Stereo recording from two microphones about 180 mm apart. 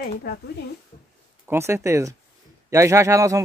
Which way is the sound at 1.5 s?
15° right (ahead or behind).